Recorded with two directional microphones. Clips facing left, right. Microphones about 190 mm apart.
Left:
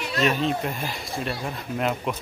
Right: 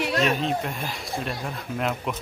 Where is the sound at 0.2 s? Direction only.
Centre (ahead or behind).